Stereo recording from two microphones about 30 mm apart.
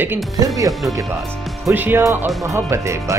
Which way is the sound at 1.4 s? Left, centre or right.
Centre.